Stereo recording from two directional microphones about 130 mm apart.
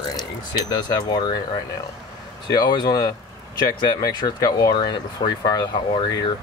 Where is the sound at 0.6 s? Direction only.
35° left (ahead or behind).